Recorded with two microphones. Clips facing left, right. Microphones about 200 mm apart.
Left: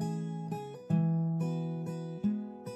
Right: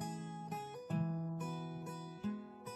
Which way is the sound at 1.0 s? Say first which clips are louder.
Left 9 dB; 50° left (ahead or behind).